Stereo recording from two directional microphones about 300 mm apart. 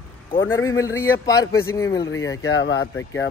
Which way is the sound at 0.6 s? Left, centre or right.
Centre.